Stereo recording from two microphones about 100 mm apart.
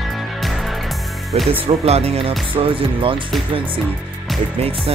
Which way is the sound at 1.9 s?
90° right.